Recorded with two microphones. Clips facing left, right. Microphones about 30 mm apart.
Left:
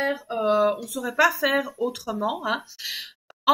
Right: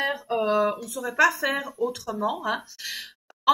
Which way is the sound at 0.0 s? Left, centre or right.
Centre.